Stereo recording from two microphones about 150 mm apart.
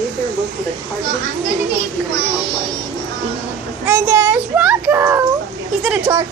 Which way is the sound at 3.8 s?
20° right (ahead or behind).